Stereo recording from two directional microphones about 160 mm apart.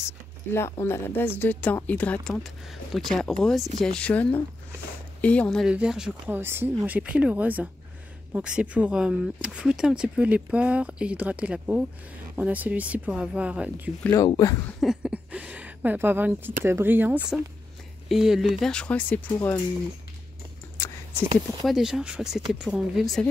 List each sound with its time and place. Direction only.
0.5 s speech: 15° left (ahead or behind); by 13.9 s 10° right (ahead or behind)
14.0 s speech: 20° left (ahead or behind)
14.8 s speech: 5° right (ahead or behind)
21.6 s speech: centre (ahead or behind)